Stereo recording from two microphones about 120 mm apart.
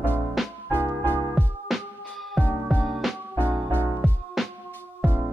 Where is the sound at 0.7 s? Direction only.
15° right (ahead or behind).